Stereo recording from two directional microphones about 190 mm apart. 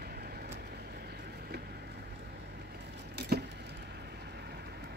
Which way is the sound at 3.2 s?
60° right (ahead or behind).